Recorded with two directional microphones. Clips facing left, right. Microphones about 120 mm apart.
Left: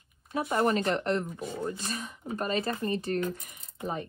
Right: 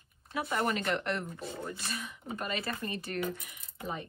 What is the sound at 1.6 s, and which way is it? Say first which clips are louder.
Speech: left 6 dB; 25° left (ahead or behind).